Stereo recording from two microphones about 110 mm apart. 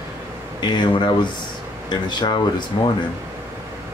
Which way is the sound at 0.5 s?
45° left (ahead or behind).